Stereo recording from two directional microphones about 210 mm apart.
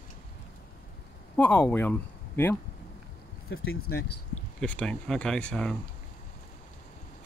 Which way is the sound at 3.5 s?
50° left (ahead or behind).